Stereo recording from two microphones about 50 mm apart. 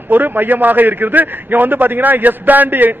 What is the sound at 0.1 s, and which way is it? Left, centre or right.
A man's voice, right.